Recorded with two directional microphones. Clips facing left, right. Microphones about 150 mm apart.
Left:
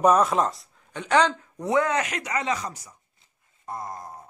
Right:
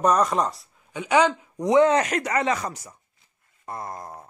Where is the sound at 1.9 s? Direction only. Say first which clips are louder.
Right 5 dB; 40° right (ahead or behind); by 2.9 s 60° right (ahead or behind).